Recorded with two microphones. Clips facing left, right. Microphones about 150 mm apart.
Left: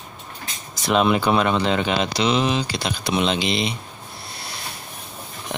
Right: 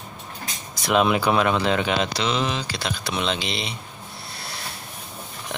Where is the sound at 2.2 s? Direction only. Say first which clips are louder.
Left 4 dB; 10° left (ahead or behind).